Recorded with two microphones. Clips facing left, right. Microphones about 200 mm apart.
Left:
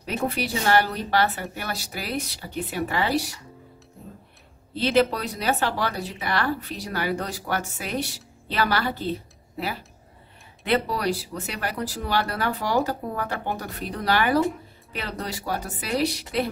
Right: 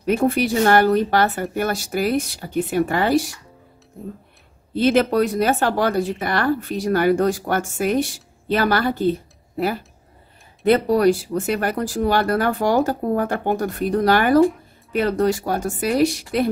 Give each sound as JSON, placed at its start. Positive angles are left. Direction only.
{"t": 0.0, "sound": "speech", "side_deg": -50}
{"t": 4.7, "sound": "speech", "side_deg": -50}